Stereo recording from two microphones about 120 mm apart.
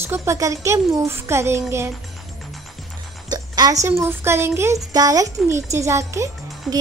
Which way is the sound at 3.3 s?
30° right (ahead or behind).